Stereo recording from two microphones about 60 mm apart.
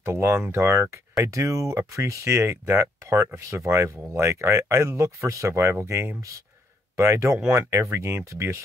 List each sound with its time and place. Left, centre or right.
0.0 s speech: right
5.5 s speech: right